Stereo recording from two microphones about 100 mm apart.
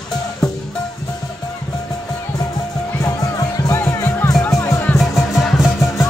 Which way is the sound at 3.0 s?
35° left (ahead or behind).